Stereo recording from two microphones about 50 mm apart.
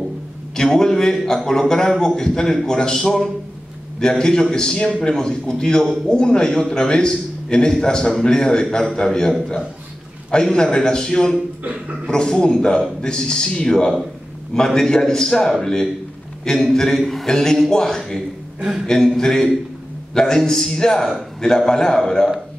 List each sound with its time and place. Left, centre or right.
0.6 s a man's voice: centre